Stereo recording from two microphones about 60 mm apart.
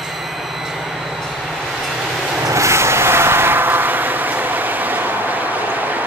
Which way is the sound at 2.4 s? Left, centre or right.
Right.